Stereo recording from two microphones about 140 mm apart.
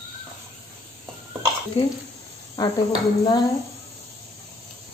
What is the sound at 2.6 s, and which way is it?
Dishes, 30° left (ahead or behind).